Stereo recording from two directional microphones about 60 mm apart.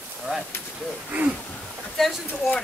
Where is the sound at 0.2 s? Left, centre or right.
Centre.